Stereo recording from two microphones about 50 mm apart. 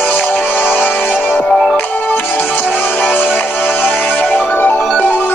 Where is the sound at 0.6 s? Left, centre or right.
Left.